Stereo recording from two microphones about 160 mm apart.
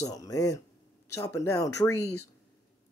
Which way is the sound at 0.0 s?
20° left (ahead or behind).